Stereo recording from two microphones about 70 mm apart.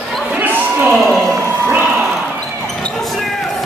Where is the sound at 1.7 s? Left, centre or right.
Right.